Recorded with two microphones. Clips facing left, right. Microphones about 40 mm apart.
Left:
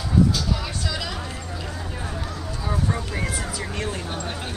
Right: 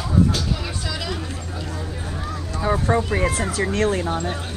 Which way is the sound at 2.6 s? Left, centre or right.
Right.